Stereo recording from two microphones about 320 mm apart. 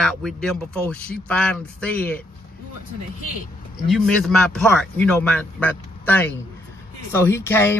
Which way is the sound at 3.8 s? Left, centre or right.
Centre.